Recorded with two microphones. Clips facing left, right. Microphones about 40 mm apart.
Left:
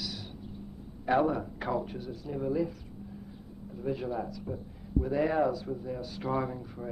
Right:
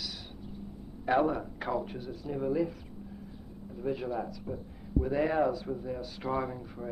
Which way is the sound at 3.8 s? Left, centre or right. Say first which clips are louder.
Even; centre.